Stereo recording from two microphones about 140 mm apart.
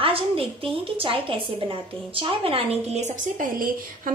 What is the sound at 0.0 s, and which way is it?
A woman's voice, 40° right (ahead or behind).